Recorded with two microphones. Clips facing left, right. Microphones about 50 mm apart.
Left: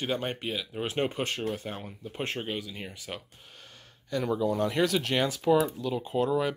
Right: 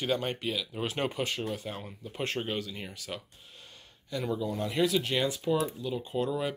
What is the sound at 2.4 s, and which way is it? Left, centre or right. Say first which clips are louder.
Speech: even; centre.